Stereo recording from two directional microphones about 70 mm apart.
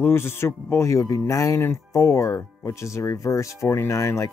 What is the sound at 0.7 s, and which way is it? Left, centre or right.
Speech, left.